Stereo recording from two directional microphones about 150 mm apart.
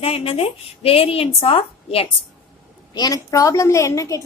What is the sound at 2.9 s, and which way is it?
A woman's voice, 25° left (ahead or behind).